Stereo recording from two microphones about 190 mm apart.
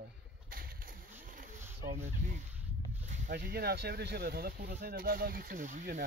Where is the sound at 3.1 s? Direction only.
45° right (ahead or behind).